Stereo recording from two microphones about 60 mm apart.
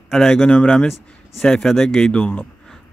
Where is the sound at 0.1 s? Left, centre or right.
Centre.